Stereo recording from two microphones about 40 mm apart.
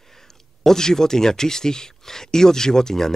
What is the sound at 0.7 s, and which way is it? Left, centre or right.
Speech, centre.